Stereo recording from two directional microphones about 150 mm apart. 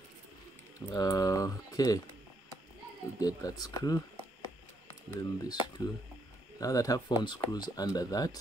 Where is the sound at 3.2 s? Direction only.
25° left (ahead or behind).